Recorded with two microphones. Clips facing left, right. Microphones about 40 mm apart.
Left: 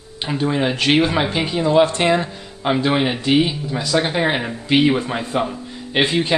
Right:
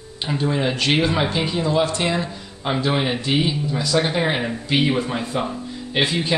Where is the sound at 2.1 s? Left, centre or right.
Centre.